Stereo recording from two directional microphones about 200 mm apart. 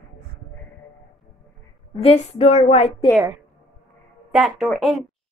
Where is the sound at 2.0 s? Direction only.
30° left (ahead or behind).